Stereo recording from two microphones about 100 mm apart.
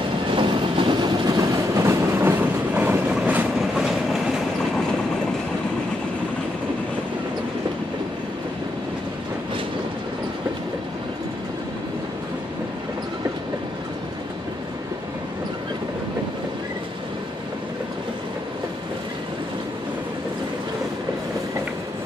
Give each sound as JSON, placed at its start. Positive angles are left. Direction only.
{"t": 0.3, "sound": "train", "side_deg": -55}